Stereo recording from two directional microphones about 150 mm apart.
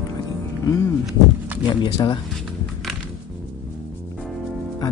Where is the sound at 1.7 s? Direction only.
30° left (ahead or behind).